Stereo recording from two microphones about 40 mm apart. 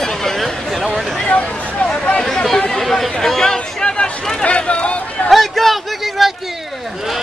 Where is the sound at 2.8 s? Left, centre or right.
Centre.